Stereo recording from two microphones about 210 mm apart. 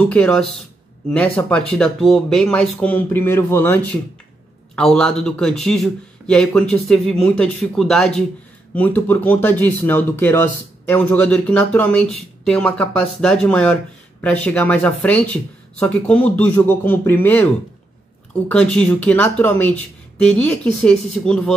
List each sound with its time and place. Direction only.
0.0 s speech: 5° left (ahead or behind)